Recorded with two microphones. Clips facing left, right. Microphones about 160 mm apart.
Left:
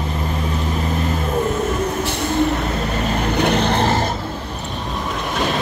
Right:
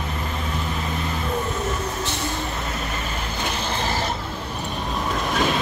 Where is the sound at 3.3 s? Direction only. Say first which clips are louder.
Left 11 dB; 65° left (ahead or behind).